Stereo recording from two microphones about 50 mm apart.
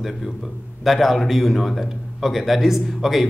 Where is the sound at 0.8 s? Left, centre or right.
Centre.